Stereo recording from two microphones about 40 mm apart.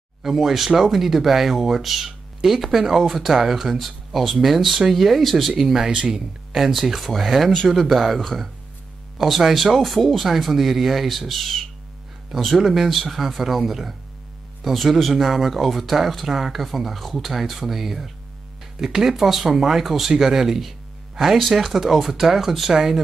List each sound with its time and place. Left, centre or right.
0.2 s speech: centre
3.7 s speech: centre
5.9 s speech: centre
6.5 s speech: centre
9.2 s speech: centre
12.5 s speech: centre